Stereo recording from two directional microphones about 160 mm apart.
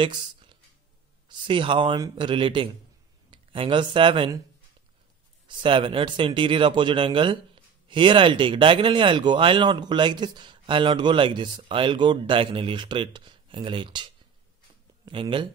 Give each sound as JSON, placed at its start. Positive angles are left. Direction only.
{"t": 0.0, "sound": "speech", "side_deg": -30}
{"t": 5.5, "sound": "speech", "side_deg": -30}